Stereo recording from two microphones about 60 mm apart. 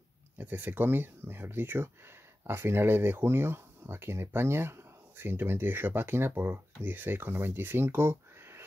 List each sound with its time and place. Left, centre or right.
0.4 s speech: right